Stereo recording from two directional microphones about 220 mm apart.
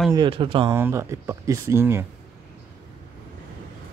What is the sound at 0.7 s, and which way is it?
Speech, 10° right (ahead or behind).